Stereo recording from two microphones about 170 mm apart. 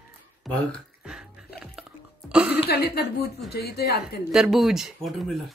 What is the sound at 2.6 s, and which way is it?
Speech, 70° left (ahead or behind).